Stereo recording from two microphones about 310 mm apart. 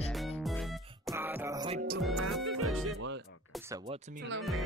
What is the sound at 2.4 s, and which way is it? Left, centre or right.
Music, right.